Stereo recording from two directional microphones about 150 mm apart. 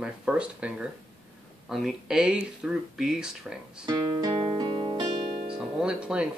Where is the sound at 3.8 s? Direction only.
25° right (ahead or behind).